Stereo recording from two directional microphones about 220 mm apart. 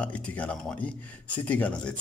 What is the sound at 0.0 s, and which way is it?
Speech, 5° left (ahead or behind).